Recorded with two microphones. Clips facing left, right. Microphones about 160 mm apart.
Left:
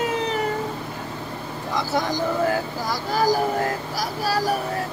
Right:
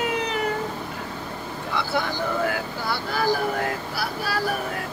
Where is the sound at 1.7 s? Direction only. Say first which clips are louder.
Left 3 dB; 35° left (ahead or behind).